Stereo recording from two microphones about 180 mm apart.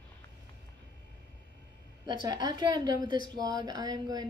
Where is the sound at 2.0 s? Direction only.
25° right (ahead or behind).